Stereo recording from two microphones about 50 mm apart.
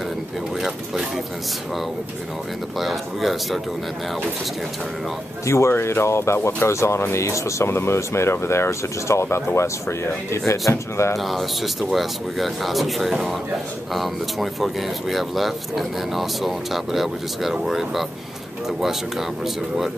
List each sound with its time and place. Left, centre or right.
0.6 s speech: centre
2.8 s speech: centre
5.4 s speech: left
5.7 s speech: left
11.1 s speech: centre